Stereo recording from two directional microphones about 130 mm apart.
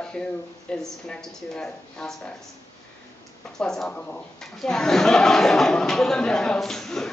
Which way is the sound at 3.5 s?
5° left (ahead or behind).